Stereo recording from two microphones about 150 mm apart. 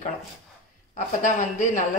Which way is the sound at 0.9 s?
55° left (ahead or behind).